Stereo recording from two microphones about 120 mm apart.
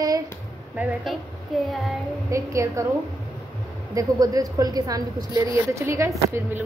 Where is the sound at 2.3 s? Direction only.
25° right (ahead or behind).